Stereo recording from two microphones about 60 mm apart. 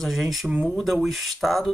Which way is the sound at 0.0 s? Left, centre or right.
Centre.